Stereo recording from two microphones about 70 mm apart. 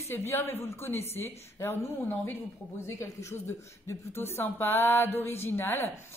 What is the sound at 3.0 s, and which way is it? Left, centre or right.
A woman's voice, left.